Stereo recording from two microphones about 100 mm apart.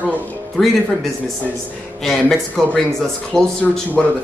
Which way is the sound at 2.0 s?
5° left (ahead or behind).